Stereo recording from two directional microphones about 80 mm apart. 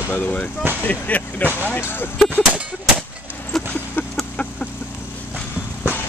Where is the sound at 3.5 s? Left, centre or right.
Centre.